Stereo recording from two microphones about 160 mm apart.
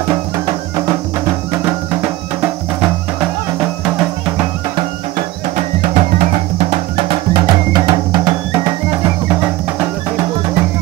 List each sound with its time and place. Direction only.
5.6 s music: 50° right (ahead or behind); by 10.2 s 15° right (ahead or behind)